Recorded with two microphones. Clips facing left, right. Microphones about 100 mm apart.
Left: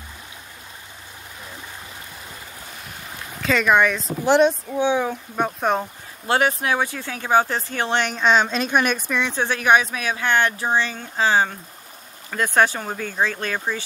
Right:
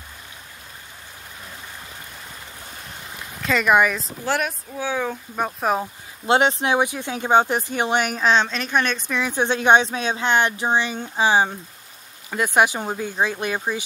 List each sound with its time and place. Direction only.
3.4 s speech: 5° right (ahead or behind)
4.2 s speech: 25° left (ahead or behind)
5.0 s speech: centre (ahead or behind)
6.2 s speech: 20° right (ahead or behind); by 8.5 s centre (ahead or behind)
8.5 s speech: 15° left (ahead or behind)
9.3 s speech: 20° right (ahead or behind)